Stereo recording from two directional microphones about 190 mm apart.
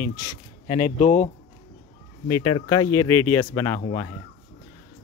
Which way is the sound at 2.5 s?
20° left (ahead or behind).